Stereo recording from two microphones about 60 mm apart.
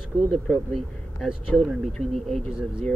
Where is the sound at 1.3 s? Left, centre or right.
Centre.